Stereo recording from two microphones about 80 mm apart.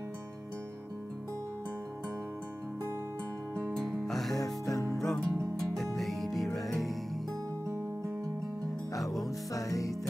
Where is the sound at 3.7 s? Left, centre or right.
Centre.